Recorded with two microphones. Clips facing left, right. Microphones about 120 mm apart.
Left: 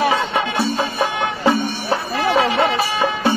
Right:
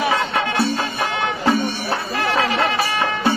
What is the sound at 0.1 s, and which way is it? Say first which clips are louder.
Music: left 1 dB; 20° left (ahead or behind).